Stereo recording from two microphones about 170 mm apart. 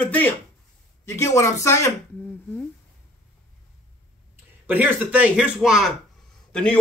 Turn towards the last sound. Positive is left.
turn(degrees=5)  # may be behind; listen again after turning